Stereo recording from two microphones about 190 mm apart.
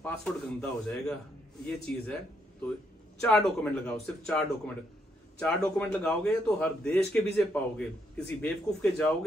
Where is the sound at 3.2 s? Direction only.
5° left (ahead or behind).